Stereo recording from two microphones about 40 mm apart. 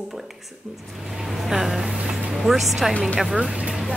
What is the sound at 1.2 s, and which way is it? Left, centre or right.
Speech, centre.